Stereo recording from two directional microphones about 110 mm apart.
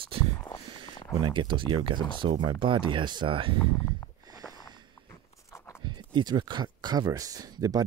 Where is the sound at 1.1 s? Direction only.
45° right (ahead or behind).